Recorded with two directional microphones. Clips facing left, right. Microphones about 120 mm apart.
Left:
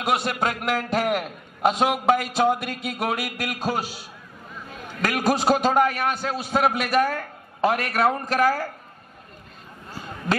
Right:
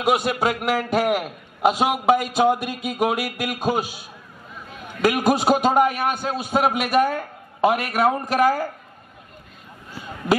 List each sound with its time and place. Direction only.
0.0 s a man's voice: 5° right (ahead or behind)
4.8 s a sound: 10° right (ahead or behind)
5.3 s a man's voice: 5° right (ahead or behind)